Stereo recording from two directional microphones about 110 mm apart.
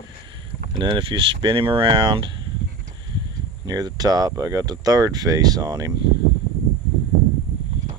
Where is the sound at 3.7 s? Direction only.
35° right (ahead or behind).